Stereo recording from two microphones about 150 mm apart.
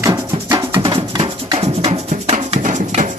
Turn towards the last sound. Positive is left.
turn(degrees=-55)  # may be behind; listen again after turning